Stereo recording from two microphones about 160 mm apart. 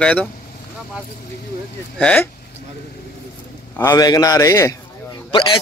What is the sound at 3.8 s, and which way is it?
Speech, 20° left (ahead or behind).